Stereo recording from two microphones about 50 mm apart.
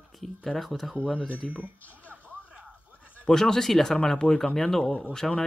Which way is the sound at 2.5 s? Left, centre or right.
Right.